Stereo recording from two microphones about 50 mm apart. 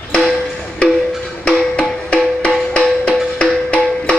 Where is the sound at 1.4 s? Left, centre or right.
Left.